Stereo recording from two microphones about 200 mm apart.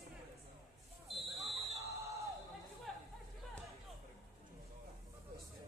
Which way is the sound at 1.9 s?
15° right (ahead or behind).